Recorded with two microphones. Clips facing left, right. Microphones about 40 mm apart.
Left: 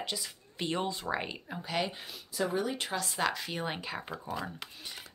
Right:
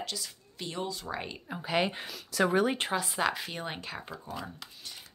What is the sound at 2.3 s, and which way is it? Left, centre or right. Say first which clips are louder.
Speech: right 6 dB; right.